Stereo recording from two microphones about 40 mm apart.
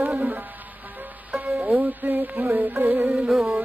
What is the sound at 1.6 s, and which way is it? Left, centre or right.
Music, right.